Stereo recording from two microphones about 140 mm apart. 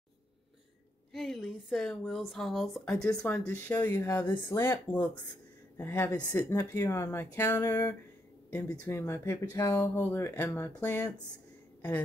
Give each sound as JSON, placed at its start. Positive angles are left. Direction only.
{"t": 1.1, "sound": "speech", "side_deg": 0}
{"t": 5.8, "sound": "speech", "side_deg": 15}